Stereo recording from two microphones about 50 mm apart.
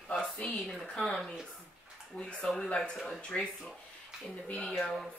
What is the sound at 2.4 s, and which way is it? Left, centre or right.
Speech, centre.